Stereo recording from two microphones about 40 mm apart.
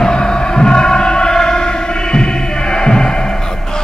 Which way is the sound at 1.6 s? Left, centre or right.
Left.